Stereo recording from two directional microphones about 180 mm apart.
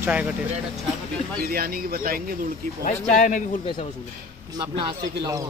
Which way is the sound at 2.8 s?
45° left (ahead or behind).